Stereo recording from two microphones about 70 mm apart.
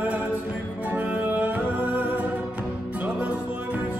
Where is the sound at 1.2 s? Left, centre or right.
Right.